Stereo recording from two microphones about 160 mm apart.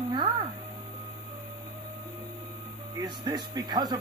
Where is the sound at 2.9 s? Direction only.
25° right (ahead or behind).